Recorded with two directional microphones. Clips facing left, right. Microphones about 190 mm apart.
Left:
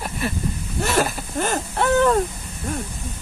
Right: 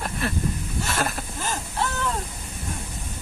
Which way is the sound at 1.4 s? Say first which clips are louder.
Left 8 dB; 65° left (ahead or behind).